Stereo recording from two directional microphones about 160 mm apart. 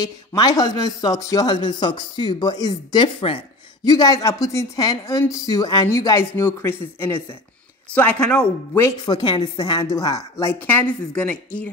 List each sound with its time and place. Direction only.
0.0 s a woman's voice: 20° left (ahead or behind)
3.8 s a woman's voice: 25° left (ahead or behind)